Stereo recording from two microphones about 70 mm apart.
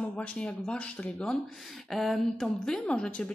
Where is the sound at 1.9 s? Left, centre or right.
Centre.